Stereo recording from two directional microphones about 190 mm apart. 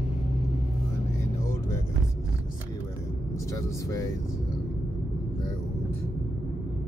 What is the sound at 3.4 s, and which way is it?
Speech, 15° left (ahead or behind).